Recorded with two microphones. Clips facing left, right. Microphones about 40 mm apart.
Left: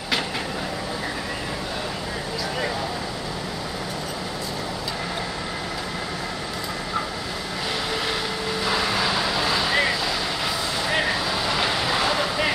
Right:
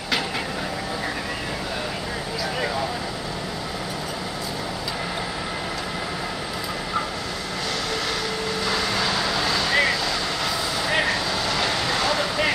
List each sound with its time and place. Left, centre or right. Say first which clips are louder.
8.6 s vehicle: left 2 dB; centre
11.4 s vehicle: even; centre